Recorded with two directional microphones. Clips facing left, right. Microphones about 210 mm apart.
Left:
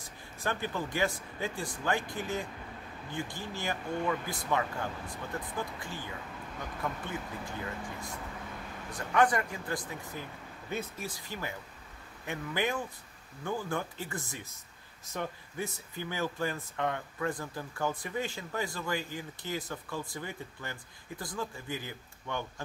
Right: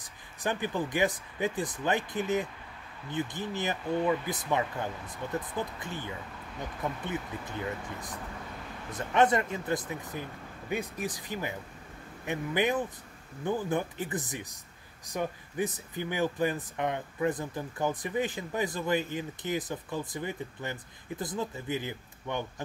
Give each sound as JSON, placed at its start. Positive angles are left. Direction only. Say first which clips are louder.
{"t": 0.0, "sound": "speech", "louder": "right 2 dB", "side_deg": -15}
{"t": 8.9, "sound": "speech", "louder": "right 2 dB", "side_deg": -25}